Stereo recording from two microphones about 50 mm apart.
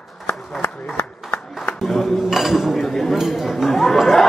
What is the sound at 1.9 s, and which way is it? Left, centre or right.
Dishes, centre.